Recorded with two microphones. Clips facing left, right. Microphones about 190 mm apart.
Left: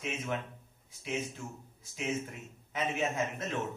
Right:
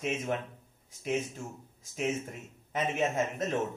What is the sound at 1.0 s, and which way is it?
Speech, 45° right (ahead or behind).